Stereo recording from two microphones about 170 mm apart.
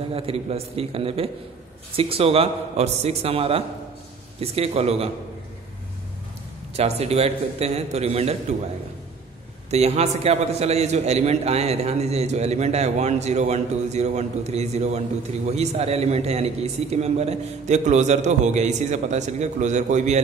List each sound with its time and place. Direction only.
0.1 s a man's voice: 35° right (ahead or behind)
6.8 s a man's voice: 35° right (ahead or behind)
9.7 s a man's voice: 40° right (ahead or behind)